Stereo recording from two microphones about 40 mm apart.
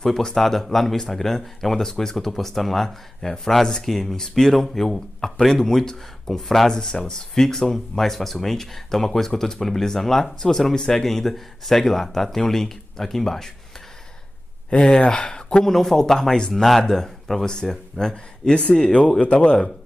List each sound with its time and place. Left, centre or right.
0.0 s speech: centre
6.7 s speech: centre
15.0 s speech: left
15.6 s speech: centre
16.3 s speech: left
18.5 s speech: left